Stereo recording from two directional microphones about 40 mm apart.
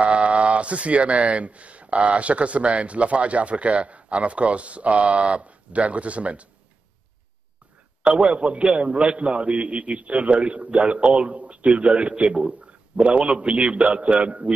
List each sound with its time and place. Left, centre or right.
0.0 s speech: right
8.0 s a man's voice: right